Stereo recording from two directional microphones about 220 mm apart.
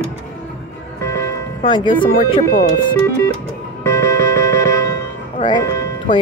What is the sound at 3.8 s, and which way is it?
Music, 15° left (ahead or behind).